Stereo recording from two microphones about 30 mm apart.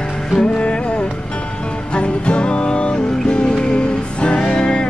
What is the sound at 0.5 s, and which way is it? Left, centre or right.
Music, left.